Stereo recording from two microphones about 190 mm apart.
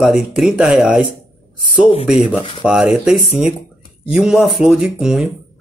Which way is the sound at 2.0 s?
5° right (ahead or behind).